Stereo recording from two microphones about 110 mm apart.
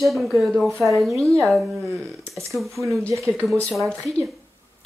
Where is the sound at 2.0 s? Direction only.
25° right (ahead or behind).